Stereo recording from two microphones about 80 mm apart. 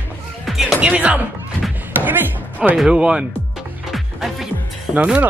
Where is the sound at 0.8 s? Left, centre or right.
Centre.